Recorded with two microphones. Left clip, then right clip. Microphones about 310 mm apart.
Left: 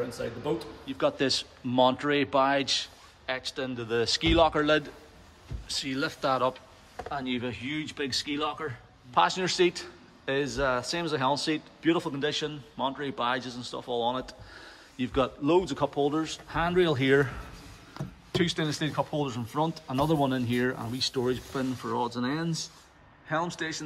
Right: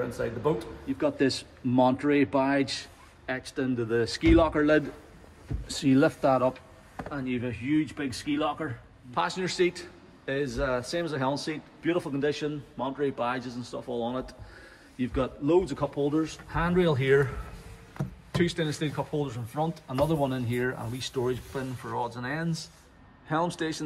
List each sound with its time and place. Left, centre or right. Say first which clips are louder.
0.8 s a man's voice: even; centre
22.0 s speech: left 2 dB; centre
23.2 s a man's voice: right 2 dB; centre